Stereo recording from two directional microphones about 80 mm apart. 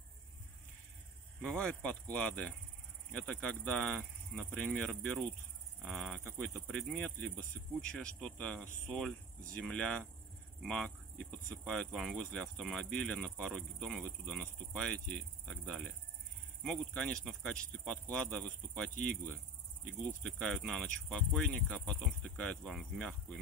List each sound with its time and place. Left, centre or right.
1.4 s speech: centre
4.0 s speech: centre
4.6 s speech: centre
5.8 s speech: centre
6.2 s speech: centre